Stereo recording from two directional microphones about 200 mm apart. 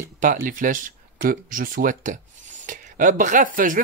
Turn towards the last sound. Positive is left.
turn(degrees=-40)  # may be behind; listen again after turning